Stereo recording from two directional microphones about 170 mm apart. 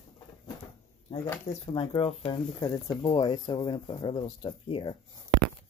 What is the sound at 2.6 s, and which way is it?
Speech, 25° left (ahead or behind).